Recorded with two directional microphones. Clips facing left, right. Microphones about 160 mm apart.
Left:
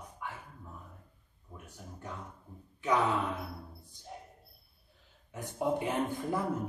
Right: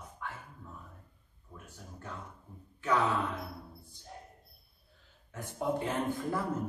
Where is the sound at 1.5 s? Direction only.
15° left (ahead or behind).